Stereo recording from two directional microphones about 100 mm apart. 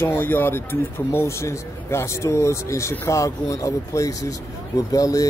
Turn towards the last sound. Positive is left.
turn(degrees=35)  # may be behind; listen again after turning